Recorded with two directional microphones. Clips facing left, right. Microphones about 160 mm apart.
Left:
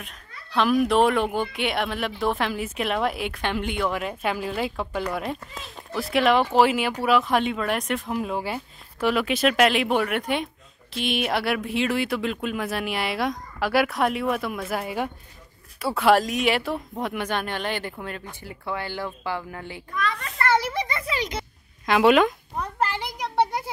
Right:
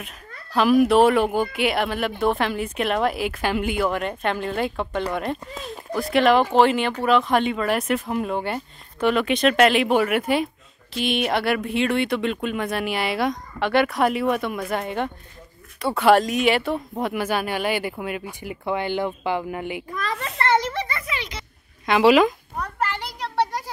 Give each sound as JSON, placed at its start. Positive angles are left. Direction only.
{"t": 0.6, "sound": "speech", "side_deg": -5}
{"t": 20.0, "sound": "a child's voice", "side_deg": -30}
{"t": 20.6, "sound": "a sound", "side_deg": 15}
{"t": 21.1, "sound": "speech", "side_deg": 45}
{"t": 21.8, "sound": "speech", "side_deg": 0}
{"t": 22.6, "sound": "a child's voice", "side_deg": 25}